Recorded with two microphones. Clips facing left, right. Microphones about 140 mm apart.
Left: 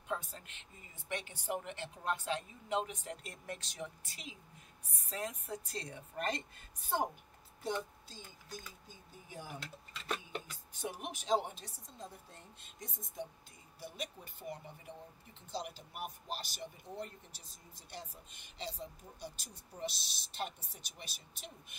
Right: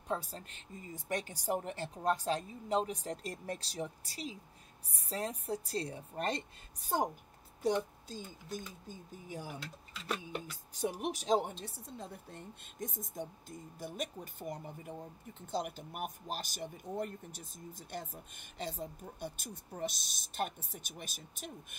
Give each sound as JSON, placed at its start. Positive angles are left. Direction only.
{"t": 0.1, "sound": "speech", "side_deg": -35}
{"t": 9.6, "sound": "speech", "side_deg": -5}
{"t": 10.7, "sound": "speech", "side_deg": -40}
{"t": 11.6, "sound": "speech", "side_deg": -60}